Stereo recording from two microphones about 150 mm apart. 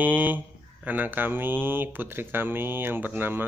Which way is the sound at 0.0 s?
10° right (ahead or behind).